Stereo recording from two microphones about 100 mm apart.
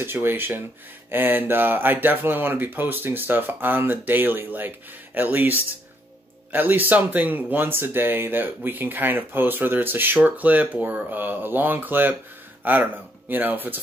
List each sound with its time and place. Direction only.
0.0 s speech: 20° right (ahead or behind)